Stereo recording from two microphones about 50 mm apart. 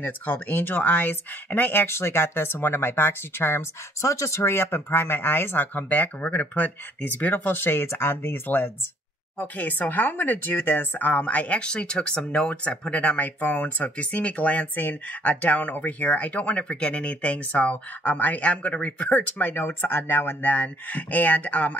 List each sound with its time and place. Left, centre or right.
0.0 s speech: left
4.0 s speech: left
5.8 s speech: left
7.8 s speech: left
9.4 s speech: left